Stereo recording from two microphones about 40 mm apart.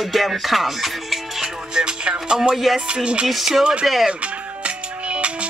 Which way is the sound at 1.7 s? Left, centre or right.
Right.